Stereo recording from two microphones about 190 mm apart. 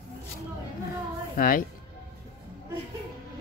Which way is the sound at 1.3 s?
50° left (ahead or behind).